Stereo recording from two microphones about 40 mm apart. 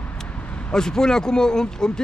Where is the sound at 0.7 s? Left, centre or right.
Centre.